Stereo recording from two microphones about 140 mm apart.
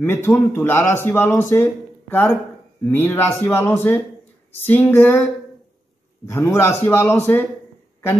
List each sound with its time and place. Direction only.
0.0 s a man's voice: 15° left (ahead or behind)
6.2 s a man's voice: 20° left (ahead or behind)